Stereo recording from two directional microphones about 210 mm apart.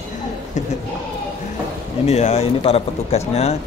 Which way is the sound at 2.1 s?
30° left (ahead or behind).